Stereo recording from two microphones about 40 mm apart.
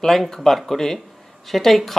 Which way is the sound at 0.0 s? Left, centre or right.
Centre.